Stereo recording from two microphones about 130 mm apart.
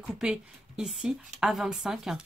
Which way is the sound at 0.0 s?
5° right (ahead or behind).